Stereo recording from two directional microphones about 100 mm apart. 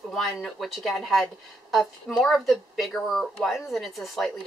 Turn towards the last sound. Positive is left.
turn(degrees=0)  # may be behind; listen again after turning